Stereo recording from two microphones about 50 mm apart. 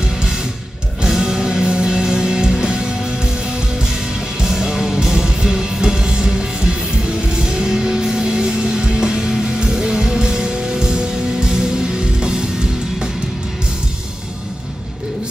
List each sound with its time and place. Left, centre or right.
0.0 s music: centre